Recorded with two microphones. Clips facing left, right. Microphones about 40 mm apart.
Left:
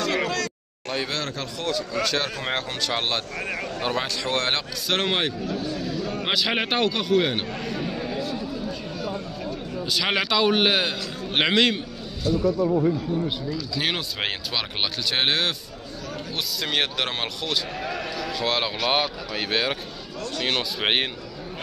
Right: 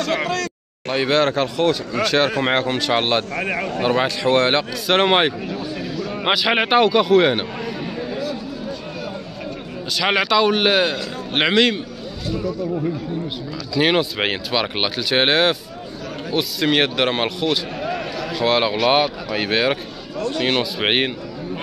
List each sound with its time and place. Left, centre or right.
0.1 s speech: centre
0.8 s a man's voice: right
6.5 s a man's voice: right
6.8 s speech: centre
7.2 s a man's voice: right
10.0 s a man's voice: centre
13.7 s a man's voice: right